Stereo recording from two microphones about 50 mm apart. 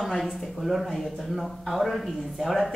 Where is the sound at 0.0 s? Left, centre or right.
Centre.